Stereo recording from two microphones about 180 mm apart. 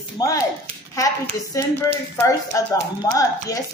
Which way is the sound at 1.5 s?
20° left (ahead or behind).